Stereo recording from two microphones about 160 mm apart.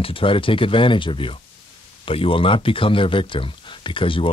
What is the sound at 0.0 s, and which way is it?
Speech, 35° left (ahead or behind).